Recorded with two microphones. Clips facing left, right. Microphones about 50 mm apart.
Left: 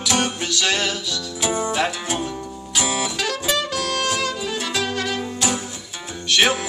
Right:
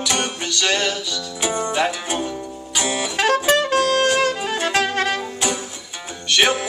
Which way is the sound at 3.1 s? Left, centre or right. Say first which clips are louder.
Right 6 dB; right.